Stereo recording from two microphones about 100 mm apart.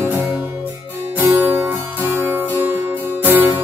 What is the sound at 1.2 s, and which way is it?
Music, 20° right (ahead or behind).